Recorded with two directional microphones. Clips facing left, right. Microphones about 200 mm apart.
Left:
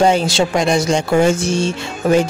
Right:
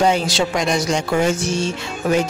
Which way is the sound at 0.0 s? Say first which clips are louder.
Left 3 dB; 30° left (ahead or behind).